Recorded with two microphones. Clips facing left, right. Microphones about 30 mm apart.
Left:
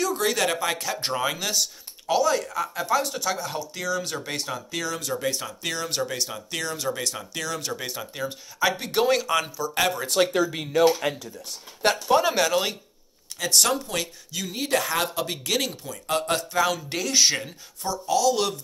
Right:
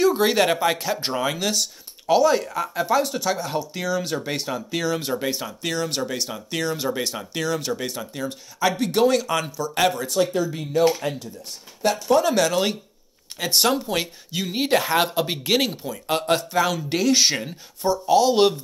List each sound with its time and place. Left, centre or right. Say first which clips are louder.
0.0 s speech: right 6 dB; right
5.6 s speech: right 3 dB; centre
10.0 s speech: even; left
12.1 s speech: right 3 dB; centre
12.4 s speech: right 2 dB; centre
13.4 s speech: right 2 dB; right
16.3 s speech: right 2 dB; centre
17.8 s speech: right 5 dB; right